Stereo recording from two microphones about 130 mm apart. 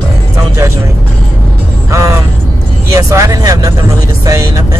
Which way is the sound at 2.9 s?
25° right (ahead or behind).